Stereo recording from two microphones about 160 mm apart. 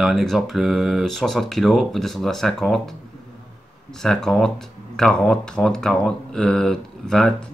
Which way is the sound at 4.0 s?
Centre (ahead or behind).